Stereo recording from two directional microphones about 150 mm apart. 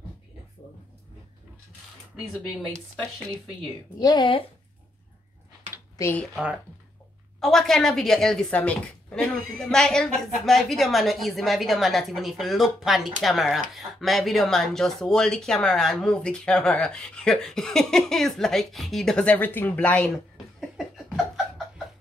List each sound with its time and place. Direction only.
4.0 s speech: 30° left (ahead or behind)
5.9 s speech: 20° left (ahead or behind)
6.2 s speech: 5° right (ahead or behind)